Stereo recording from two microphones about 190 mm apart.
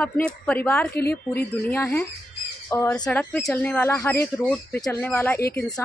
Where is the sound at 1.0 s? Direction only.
55° left (ahead or behind).